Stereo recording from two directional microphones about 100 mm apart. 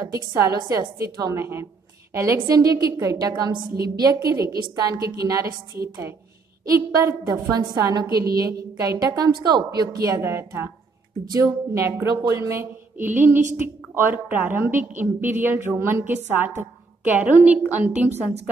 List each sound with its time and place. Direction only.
0.7 s a woman's voice: 35° right (ahead or behind)
6.6 s a woman's voice: 40° right (ahead or behind)
10.2 s a woman's voice: 25° right (ahead or behind)